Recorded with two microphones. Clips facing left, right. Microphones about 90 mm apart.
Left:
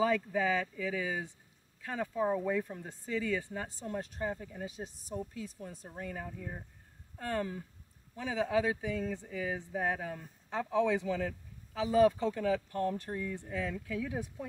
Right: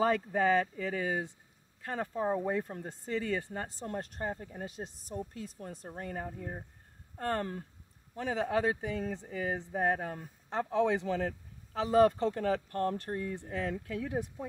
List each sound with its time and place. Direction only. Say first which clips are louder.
0.0 s speech: right 2 dB; 50° right (ahead or behind)
4.6 s speech: even; 60° right (ahead or behind)
5.9 s speech: right 3 dB; 40° right (ahead or behind)
7.2 s speech: right 2 dB; 50° right (ahead or behind)